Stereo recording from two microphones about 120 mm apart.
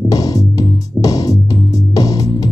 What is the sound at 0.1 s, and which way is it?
Music, 30° left (ahead or behind).